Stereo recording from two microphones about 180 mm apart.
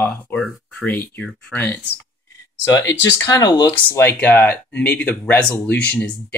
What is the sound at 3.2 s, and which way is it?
Speech, 20° left (ahead or behind).